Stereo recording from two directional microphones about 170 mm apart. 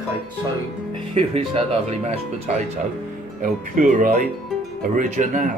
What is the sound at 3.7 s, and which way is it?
Speech, 50° right (ahead or behind).